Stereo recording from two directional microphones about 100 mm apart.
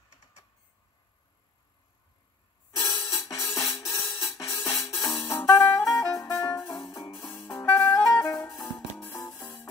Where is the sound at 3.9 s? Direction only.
30° left (ahead or behind).